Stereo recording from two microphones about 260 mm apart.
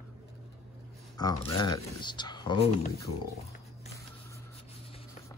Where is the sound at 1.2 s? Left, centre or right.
Centre.